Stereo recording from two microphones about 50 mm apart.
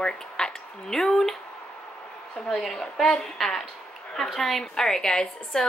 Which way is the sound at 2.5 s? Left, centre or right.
Centre.